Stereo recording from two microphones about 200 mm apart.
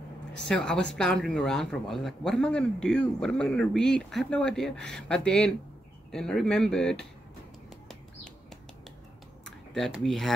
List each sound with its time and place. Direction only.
0.5 s speech: 5° left (ahead or behind)
9.4 s tick-tock: centre (ahead or behind)